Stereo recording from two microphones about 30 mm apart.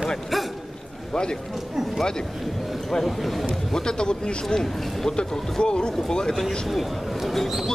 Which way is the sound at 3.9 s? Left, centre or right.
Left.